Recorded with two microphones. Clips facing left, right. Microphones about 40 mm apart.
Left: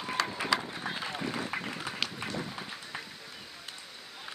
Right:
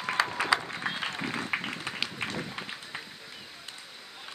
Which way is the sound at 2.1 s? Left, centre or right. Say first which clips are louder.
Right 2 dB; right.